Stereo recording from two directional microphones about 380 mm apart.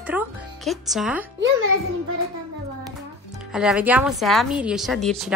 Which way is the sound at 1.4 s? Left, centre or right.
Right.